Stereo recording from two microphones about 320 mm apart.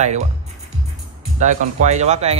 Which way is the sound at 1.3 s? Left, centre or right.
Right.